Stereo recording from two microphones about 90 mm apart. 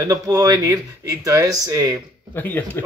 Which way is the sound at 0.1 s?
40° right (ahead or behind).